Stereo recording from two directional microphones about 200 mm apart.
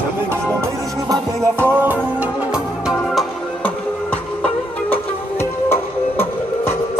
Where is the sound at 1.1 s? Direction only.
10° right (ahead or behind).